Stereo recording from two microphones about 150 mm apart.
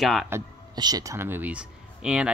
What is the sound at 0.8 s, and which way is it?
Speech, 25° right (ahead or behind).